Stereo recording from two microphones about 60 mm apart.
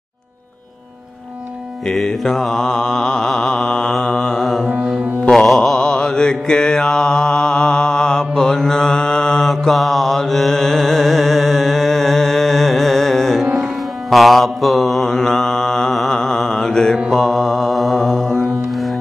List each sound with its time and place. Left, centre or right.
1.9 s mantra: centre
4.4 s music: centre
5.3 s mantra: centre
9.5 s mantra: centre